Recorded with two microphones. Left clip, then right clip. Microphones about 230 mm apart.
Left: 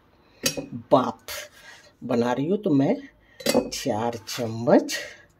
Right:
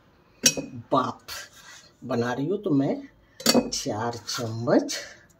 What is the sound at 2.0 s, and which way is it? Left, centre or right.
Speech, left.